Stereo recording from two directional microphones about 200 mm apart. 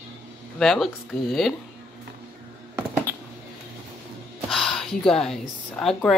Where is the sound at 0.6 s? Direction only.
Centre (ahead or behind).